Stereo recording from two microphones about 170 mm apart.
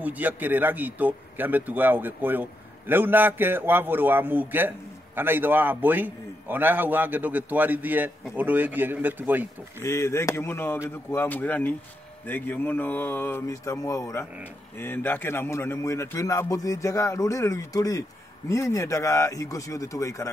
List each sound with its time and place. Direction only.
0.0 s a man's voice: 10° right (ahead or behind)
9.8 s a man's voice: 15° left (ahead or behind)